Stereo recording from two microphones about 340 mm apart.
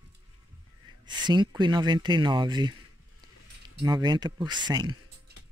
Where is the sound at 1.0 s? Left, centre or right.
Centre.